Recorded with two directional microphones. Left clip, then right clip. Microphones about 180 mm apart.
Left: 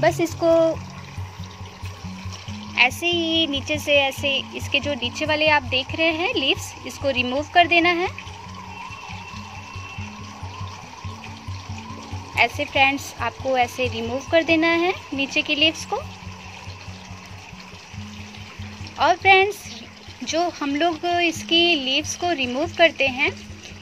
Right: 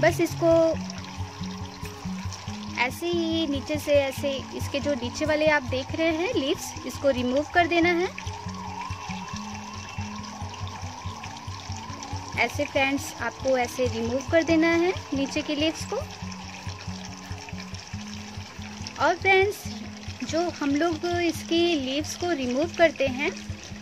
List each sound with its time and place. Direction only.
0.0 s speech: 5° right (ahead or behind)
2.7 s speech: 10° right (ahead or behind)
12.4 s speech: 15° right (ahead or behind)
18.9 s speech: 15° right (ahead or behind)
20.5 s speech: 15° right (ahead or behind)